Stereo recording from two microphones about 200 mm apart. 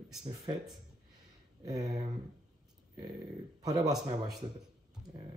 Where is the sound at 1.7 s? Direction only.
20° right (ahead or behind).